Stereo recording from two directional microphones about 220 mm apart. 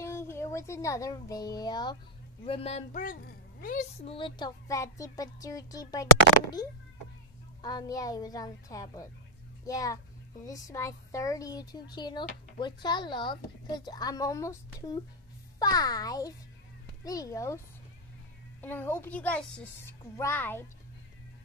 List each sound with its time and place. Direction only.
0.0 s a child's voice: 10° left (ahead or behind); by 4.1 s 40° left (ahead or behind)
4.1 s speech: 20° left (ahead or behind)
7.6 s speech: 15° left (ahead or behind)
18.6 s speech: 10° left (ahead or behind)